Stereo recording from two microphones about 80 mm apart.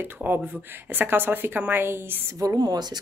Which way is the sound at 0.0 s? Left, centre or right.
Right.